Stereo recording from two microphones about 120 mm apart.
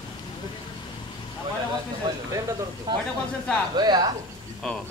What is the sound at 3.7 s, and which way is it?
Speech, 35° right (ahead or behind).